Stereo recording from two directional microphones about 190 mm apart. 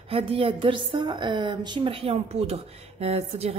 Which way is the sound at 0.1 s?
30° right (ahead or behind).